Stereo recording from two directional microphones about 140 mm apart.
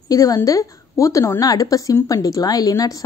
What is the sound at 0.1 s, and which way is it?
A woman's voice, 25° left (ahead or behind).